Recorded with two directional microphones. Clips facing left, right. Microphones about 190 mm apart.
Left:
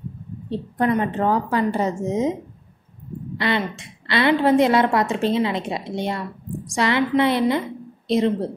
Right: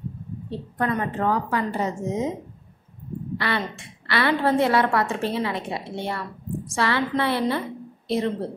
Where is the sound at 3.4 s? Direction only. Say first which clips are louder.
Left 5 dB; 20° left (ahead or behind).